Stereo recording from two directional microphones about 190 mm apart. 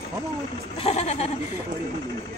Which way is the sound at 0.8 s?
35° left (ahead or behind).